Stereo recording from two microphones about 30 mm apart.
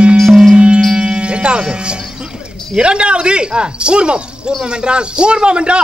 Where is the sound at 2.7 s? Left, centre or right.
Right.